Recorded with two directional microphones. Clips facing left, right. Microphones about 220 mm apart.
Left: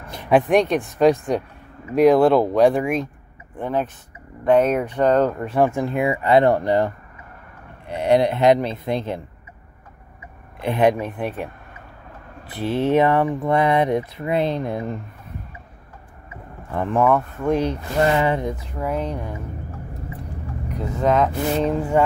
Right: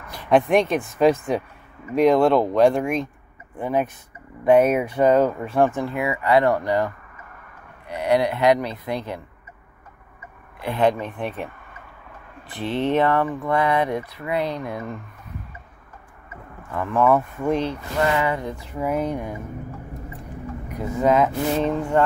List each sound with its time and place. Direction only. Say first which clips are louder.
0.0 s a sound: left 3 dB; 25° left (ahead or behind)
0.3 s speech: left 1 dB; centre (ahead or behind)
3.5 s speech: right 1 dB; 10° right (ahead or behind); by 5.9 s 5° left (ahead or behind)
5.9 s speech: left 3 dB; 25° left (ahead or behind)
7.9 s speech: left 3 dB; 25° left (ahead or behind)
10.6 s speech: left 2 dB; 15° left (ahead or behind)
12.5 s speech: left 3 dB; 5° left (ahead or behind)
13.0 s speech: left 2 dB; 15° left (ahead or behind)
16.7 s speech: left 3 dB; 30° left (ahead or behind)
17.0 s speech: right 1 dB; 5° right (ahead or behind)
17.9 s speech: left 3 dB; 30° left (ahead or behind)
18.6 s speech: right 1 dB; 5° right (ahead or behind)
20.6 s speech: right 1 dB; 5° right (ahead or behind)